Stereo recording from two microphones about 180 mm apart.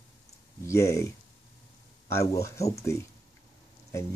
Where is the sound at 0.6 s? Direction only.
15° left (ahead or behind).